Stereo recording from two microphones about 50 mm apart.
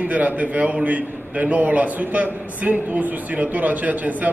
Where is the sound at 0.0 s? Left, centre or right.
Right.